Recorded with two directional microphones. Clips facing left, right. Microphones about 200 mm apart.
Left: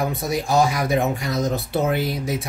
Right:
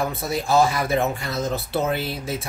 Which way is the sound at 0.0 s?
15° left (ahead or behind).